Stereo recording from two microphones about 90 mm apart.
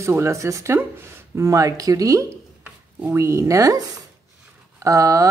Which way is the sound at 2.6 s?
20° right (ahead or behind).